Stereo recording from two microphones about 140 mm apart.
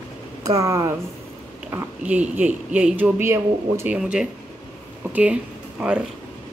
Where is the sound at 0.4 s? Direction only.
25° right (ahead or behind).